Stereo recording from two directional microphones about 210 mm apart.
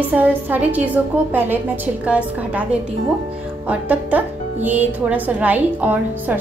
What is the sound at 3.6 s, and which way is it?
Speech, 5° right (ahead or behind).